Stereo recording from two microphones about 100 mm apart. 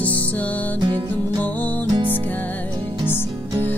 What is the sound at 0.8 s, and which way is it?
Music, 45° right (ahead or behind).